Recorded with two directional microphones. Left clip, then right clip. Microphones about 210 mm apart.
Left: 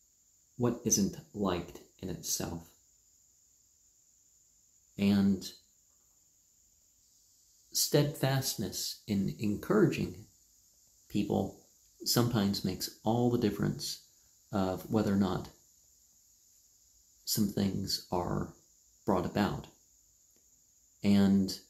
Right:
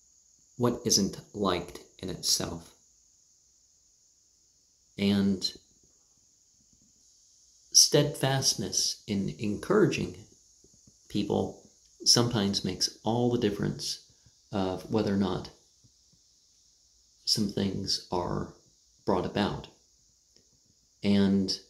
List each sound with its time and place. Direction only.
1.1 s speech: 5° left (ahead or behind)
4.9 s speech: 10° left (ahead or behind)
7.7 s speech: 15° left (ahead or behind)
17.3 s speech: 15° left (ahead or behind)
21.0 s speech: 15° left (ahead or behind)